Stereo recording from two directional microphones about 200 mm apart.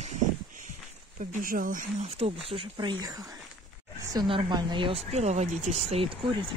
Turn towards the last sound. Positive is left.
turn(degrees=-30)  # may be behind; listen again after turning